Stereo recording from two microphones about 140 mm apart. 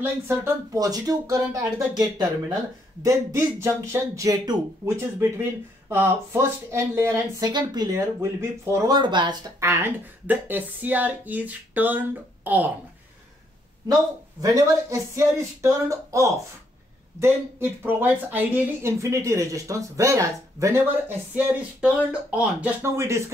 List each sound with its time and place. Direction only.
0.7 s speech: 25° right (ahead or behind)
8.9 s speech: 35° right (ahead or behind)
9.6 s speech: 15° right (ahead or behind)
13.8 s speech: 25° right (ahead or behind)
21.4 s speech: 10° right (ahead or behind)